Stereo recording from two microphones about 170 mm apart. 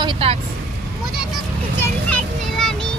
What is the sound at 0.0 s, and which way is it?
Speech, 35° right (ahead or behind).